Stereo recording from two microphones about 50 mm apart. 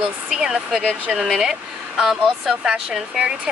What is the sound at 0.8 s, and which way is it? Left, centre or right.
Speech, right.